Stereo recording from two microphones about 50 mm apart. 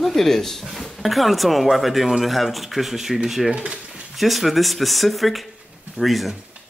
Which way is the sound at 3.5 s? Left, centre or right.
Right.